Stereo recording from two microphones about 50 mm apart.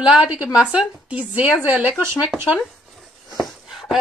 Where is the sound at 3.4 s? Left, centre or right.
Centre.